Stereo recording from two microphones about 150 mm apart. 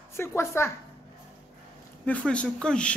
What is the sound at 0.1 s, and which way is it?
Speech, 15° left (ahead or behind).